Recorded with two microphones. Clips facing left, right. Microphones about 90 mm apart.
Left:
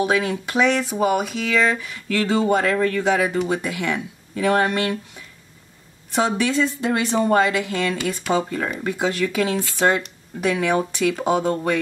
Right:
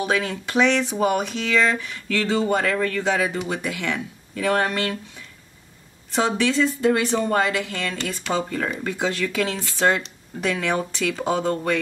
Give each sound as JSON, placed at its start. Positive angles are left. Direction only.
{"t": 0.0, "sound": "speech", "side_deg": 15}
{"t": 6.1, "sound": "speech", "side_deg": 15}